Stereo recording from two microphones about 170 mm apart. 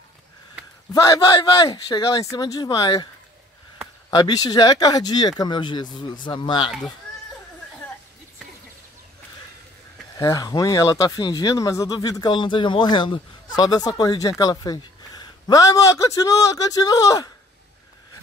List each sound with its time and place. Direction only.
0.9 s speech: 20° left (ahead or behind)
4.1 s speech: 20° left (ahead or behind)
10.1 s speech: 20° left (ahead or behind)